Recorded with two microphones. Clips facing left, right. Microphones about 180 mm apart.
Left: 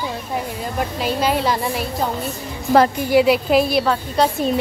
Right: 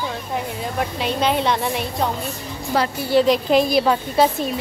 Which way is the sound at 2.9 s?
15° left (ahead or behind).